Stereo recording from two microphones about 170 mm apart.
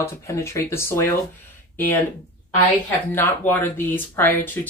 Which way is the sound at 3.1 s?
10° left (ahead or behind).